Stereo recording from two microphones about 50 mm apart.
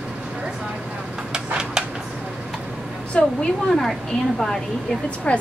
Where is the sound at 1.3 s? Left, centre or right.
Centre.